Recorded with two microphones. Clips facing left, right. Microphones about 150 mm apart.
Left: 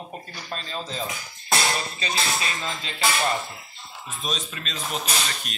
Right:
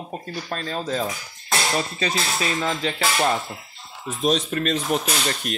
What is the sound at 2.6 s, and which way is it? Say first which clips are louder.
Music: right 8 dB; 85° right.